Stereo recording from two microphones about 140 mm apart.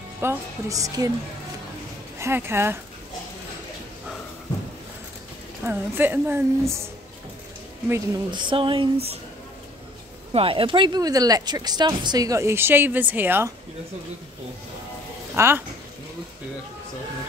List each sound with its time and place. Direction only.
0.2 s speech: 20° right (ahead or behind)
2.1 s a woman's voice: 20° right (ahead or behind)
5.6 s a woman's voice: 15° right (ahead or behind)
8.3 s speech: 35° right (ahead or behind)
10.3 s speech: 40° right (ahead or behind); by 13.5 s 15° right (ahead or behind)
15.3 s speech: 20° right (ahead or behind)